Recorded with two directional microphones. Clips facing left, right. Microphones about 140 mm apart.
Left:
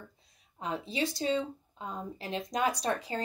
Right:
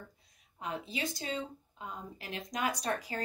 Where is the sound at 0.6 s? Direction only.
30° left (ahead or behind).